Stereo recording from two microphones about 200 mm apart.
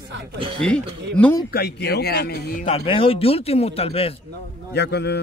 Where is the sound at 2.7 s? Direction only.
30° left (ahead or behind).